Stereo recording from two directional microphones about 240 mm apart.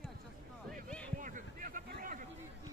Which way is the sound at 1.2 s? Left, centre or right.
Right.